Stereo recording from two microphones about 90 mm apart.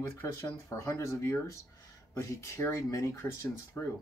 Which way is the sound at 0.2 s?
35° left (ahead or behind).